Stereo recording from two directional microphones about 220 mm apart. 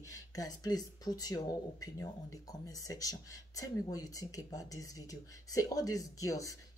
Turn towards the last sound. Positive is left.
turn(degrees=15)  # may be behind; listen again after turning